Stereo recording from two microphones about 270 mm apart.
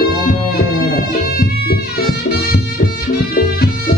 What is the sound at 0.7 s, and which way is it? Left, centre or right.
Music, left.